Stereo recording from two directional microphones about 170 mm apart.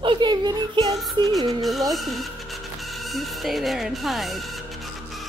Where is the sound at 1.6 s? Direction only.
Centre (ahead or behind).